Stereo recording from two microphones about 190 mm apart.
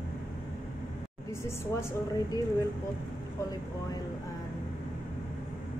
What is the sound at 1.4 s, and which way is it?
A woman's voice, 15° left (ahead or behind).